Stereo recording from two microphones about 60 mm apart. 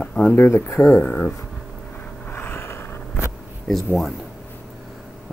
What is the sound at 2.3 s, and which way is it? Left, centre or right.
Vehicle, left.